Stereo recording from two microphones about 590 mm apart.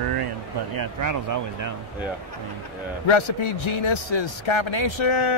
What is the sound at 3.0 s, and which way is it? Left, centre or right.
A man's voice, left.